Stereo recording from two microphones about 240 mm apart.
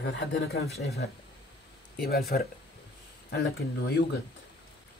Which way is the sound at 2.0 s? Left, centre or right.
Left.